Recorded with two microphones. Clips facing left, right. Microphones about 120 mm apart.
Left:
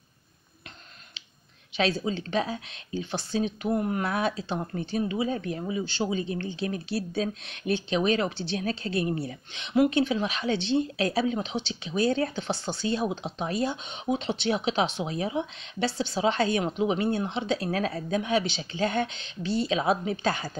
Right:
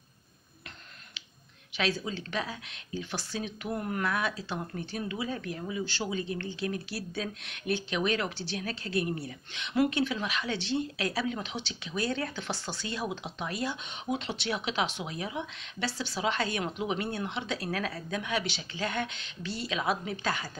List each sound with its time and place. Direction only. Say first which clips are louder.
1.8 s speech: left 5 dB; 30° left (ahead or behind)